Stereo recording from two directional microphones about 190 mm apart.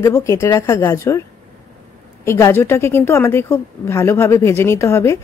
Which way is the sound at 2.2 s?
15° left (ahead or behind).